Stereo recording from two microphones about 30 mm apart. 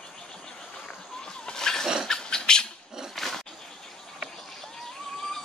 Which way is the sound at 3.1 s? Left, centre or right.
Centre.